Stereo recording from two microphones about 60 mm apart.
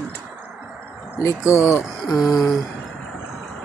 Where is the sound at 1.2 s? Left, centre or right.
Left.